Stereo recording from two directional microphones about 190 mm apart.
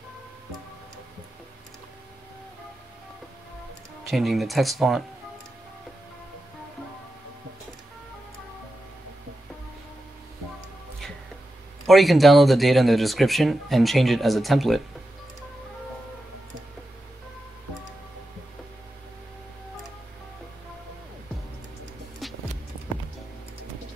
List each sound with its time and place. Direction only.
4.1 s speech: centre (ahead or behind)
11.8 s speech: centre (ahead or behind)
22.2 s music: centre (ahead or behind)